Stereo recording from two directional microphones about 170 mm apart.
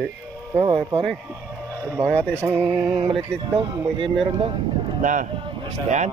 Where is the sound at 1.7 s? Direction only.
15° right (ahead or behind).